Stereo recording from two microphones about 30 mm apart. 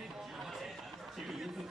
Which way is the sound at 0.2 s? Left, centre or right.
Centre.